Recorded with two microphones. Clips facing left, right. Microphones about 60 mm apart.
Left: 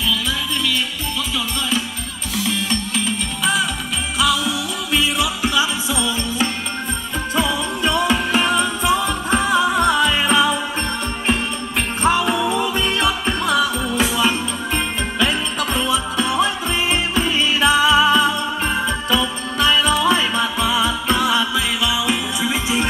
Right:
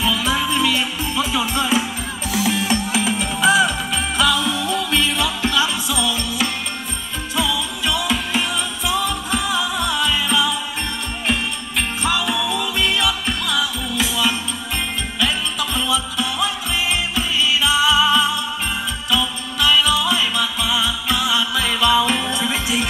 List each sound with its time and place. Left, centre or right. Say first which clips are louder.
0.0 s music: right 3 dB; centre; by 10.6 s left
12.0 s music: left 5 dB; left
21.5 s music: right 3 dB; centre